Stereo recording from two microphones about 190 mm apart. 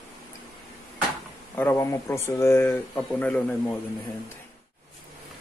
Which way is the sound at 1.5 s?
10° left (ahead or behind).